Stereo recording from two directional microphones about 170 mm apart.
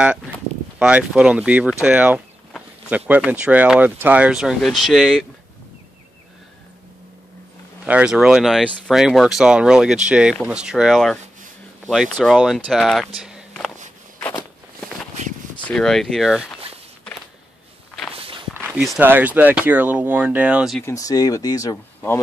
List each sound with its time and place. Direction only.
0.7 s speech: 5° right (ahead or behind)
7.8 s speech: 5° right (ahead or behind)
13.2 s walk: 5° right (ahead or behind)
15.6 s speech: 5° left (ahead or behind)
18.1 s walk: 35° right (ahead or behind)
18.9 s speech: 10° right (ahead or behind)
20.8 s speech: 20° left (ahead or behind)